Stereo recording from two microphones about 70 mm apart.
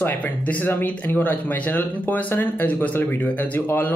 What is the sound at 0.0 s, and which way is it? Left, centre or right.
Speech, left.